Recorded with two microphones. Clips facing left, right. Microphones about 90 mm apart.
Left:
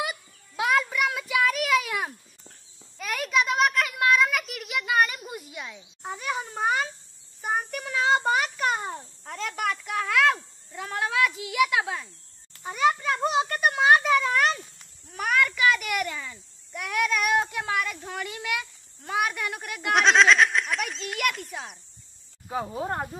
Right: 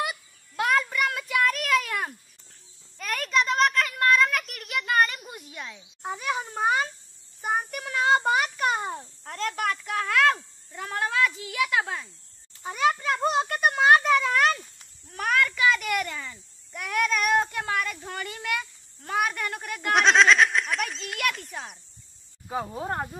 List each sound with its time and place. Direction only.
0.0 s child singing: centre (ahead or behind)
3.0 s a sound: 5° left (ahead or behind)
22.5 s speech: centre (ahead or behind)